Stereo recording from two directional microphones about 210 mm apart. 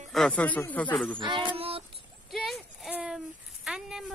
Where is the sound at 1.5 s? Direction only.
25° right (ahead or behind).